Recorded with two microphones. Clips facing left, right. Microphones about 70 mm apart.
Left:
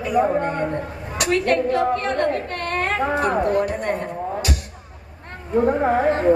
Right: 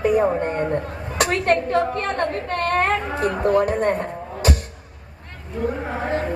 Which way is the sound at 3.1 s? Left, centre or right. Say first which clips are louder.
Left 3 dB; left.